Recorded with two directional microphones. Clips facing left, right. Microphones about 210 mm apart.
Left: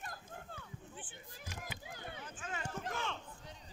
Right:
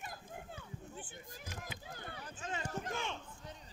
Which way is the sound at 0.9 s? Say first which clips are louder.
Right 3 dB; 40° right (ahead or behind).